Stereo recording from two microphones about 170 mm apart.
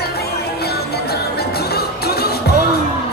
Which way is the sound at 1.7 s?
65° left (ahead or behind).